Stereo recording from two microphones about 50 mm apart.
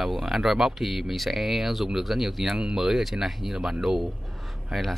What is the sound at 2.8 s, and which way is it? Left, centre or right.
Speech, centre.